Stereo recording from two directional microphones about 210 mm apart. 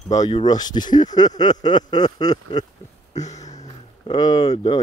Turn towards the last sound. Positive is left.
turn(degrees=20)  # may be behind; listen again after turning